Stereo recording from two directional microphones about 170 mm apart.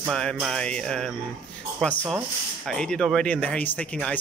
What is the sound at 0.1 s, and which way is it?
Speech, 5° left (ahead or behind).